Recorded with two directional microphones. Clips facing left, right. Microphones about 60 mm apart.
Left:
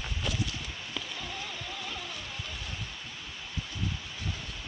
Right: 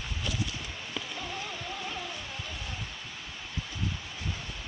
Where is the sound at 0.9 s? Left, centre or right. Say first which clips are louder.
Right 2 dB; centre.